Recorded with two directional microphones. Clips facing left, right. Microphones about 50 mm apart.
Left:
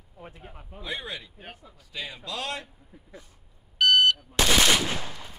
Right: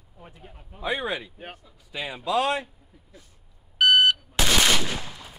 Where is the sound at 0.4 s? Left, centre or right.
Centre.